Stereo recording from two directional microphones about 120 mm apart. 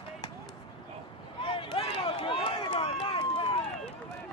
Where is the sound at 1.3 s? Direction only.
45° left (ahead or behind).